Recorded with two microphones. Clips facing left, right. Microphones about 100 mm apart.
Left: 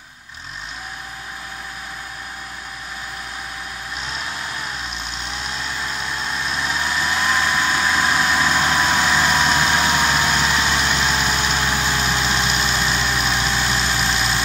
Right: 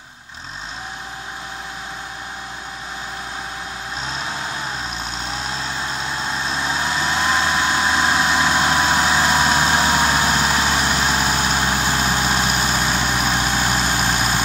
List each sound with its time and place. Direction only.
4.0 s vehicle: 30° right (ahead or behind); by 14.4 s 45° right (ahead or behind)